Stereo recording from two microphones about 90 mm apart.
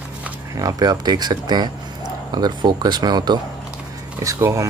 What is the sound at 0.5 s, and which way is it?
Speech, 45° right (ahead or behind).